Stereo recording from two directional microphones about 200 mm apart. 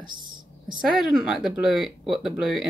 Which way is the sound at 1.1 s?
5° right (ahead or behind).